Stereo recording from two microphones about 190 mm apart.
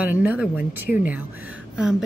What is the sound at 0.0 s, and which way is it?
Speech, 10° right (ahead or behind).